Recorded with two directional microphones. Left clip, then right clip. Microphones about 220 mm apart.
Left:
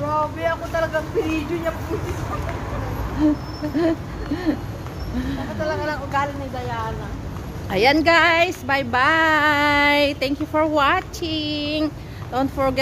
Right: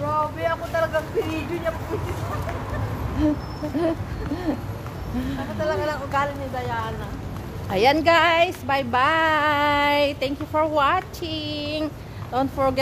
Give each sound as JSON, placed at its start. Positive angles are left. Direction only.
{"t": 0.1, "sound": "boat", "side_deg": 5}
{"t": 3.2, "sound": "speech", "side_deg": -10}
{"t": 5.6, "sound": "speech", "side_deg": -15}
{"t": 7.7, "sound": "a woman's voice", "side_deg": 0}